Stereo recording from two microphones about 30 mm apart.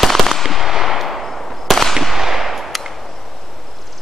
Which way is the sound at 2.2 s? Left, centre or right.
Centre.